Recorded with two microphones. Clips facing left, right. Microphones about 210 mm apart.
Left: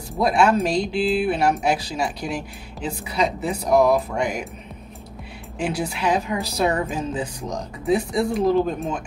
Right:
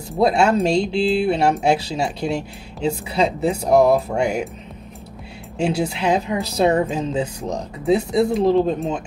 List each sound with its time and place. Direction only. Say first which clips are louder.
0.2 s speech: right 2 dB; 25° right (ahead or behind)
5.6 s speech: right 4 dB; 25° right (ahead or behind)